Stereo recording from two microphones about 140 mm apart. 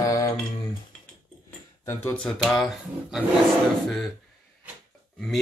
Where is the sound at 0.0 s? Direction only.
25° left (ahead or behind).